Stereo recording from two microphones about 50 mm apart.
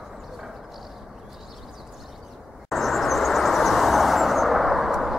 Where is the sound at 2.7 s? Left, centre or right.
Centre.